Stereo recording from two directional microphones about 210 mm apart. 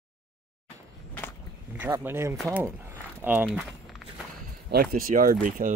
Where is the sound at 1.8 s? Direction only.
10° right (ahead or behind).